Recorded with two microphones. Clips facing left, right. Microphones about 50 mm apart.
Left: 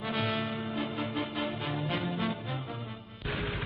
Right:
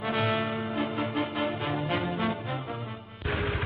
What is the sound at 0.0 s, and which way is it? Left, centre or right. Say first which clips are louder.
Music: right 4 dB; centre.